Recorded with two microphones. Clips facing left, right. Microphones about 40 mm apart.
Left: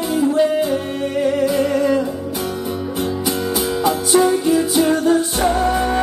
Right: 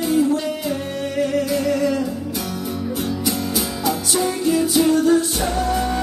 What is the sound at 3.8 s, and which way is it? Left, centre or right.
Music, left.